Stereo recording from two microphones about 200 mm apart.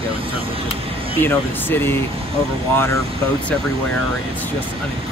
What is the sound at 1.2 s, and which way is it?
Speech, 10° left (ahead or behind).